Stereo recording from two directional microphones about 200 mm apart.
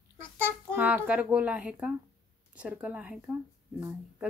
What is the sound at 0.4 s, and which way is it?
A child's voice, 10° right (ahead or behind).